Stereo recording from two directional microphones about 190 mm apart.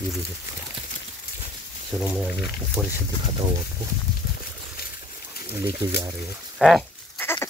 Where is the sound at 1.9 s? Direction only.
5° right (ahead or behind).